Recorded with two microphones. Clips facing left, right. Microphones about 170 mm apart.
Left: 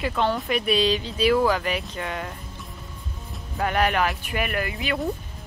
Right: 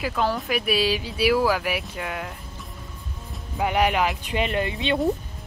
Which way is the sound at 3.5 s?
15° right (ahead or behind).